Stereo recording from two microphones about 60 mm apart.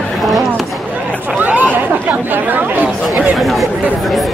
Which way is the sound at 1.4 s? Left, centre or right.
Right.